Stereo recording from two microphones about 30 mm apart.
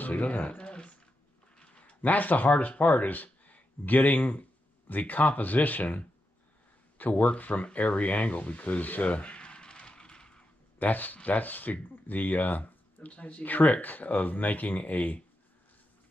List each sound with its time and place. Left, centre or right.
0.0 s speech: left
0.6 s a sound: left
2.0 s speech: left
2.6 s speech: left
7.1 s speech: left
9.1 s a sound: left
10.8 s speech: left